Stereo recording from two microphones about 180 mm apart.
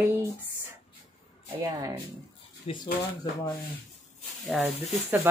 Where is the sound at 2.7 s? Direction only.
35° left (ahead or behind).